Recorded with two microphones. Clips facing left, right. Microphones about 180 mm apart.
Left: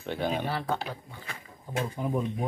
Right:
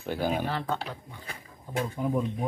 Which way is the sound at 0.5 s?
10° left (ahead or behind).